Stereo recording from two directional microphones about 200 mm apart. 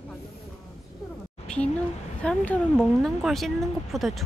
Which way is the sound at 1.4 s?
5° left (ahead or behind).